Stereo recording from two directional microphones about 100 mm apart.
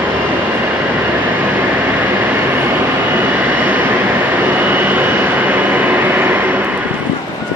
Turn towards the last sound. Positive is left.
turn(degrees=-20)  # may be behind; listen again after turning